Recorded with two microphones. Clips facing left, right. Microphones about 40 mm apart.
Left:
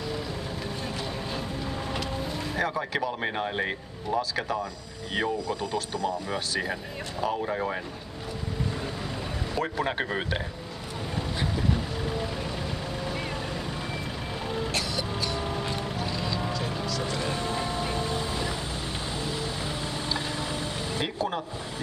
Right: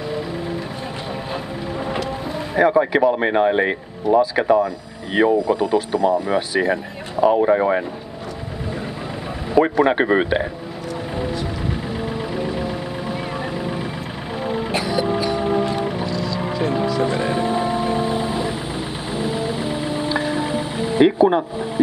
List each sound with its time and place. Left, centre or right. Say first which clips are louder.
2.5 s speech: right 14 dB; right
7.3 s speech: right 13 dB; right
9.8 s speech: right 12 dB; right
14.4 s music: right 8 dB; right
16.1 s vehicle: right 7 dB; left
16.3 s music: right 10 dB; right